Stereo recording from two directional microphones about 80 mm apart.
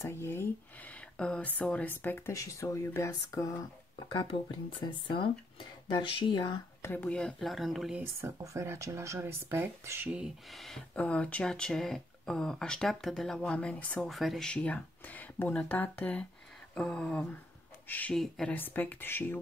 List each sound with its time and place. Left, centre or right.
0.0 s speech: left
0.8 s a sound: centre
1.6 s speech: centre
2.3 s speech: left
4.1 s speech: left
7.0 s speech: centre
8.0 s speech: right
10.0 s speech: centre
10.5 s speech: centre
11.0 s speech: centre
14.0 s speech: centre
14.5 s speech: centre
18.1 s speech: centre
18.5 s speech: left